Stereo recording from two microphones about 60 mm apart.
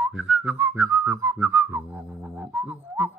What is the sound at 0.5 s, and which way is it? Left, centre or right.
Whistling, right.